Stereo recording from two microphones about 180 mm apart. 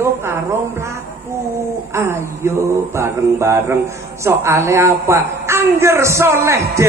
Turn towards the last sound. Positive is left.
turn(degrees=-15)  # may be behind; listen again after turning